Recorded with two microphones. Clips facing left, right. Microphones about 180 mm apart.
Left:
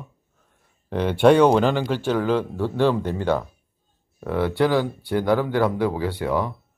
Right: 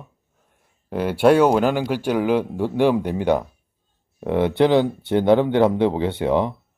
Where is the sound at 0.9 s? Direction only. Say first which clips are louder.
Even; 5° right (ahead or behind); by 6.5 s 20° right (ahead or behind).